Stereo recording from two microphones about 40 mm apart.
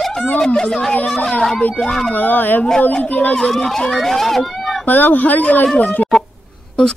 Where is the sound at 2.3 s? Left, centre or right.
Left.